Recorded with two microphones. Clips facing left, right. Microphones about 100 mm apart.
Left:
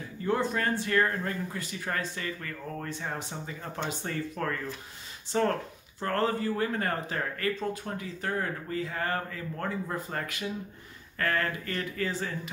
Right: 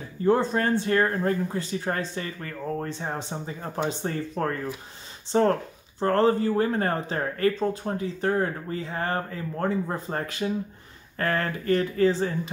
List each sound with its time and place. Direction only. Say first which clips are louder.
0.2 s speech: right 6 dB; 30° right (ahead or behind)